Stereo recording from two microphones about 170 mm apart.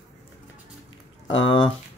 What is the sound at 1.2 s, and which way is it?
Speech, 30° left (ahead or behind).